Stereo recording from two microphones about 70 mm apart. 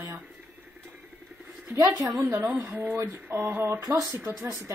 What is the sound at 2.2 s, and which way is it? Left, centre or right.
Speech, right.